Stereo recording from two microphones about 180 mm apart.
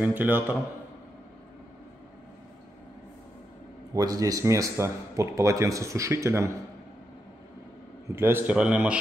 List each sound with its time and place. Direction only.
0.0 s speech: 10° right (ahead or behind)
3.9 s speech: 20° right (ahead or behind)
8.1 s speech: 15° right (ahead or behind)